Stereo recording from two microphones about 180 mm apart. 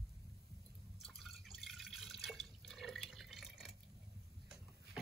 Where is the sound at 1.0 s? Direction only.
Centre (ahead or behind).